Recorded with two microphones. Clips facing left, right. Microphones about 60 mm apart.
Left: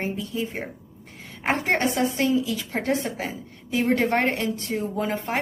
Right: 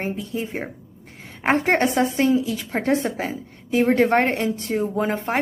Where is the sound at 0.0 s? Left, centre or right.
Right.